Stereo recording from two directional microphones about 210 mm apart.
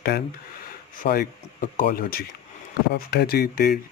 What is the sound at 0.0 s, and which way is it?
Speech, 45° left (ahead or behind).